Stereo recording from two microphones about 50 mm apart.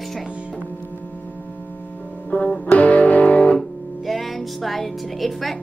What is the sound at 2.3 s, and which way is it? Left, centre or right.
Music, left.